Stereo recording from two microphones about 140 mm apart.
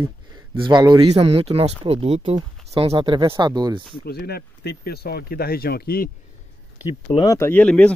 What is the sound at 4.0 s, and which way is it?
Speech, 90° left.